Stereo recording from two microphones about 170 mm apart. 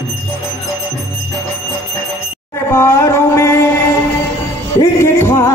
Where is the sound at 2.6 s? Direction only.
15° left (ahead or behind).